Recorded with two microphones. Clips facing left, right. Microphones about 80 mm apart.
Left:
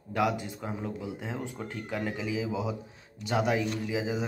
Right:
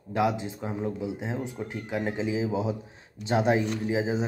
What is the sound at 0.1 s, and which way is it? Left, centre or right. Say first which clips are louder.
Speech: right 2 dB; right.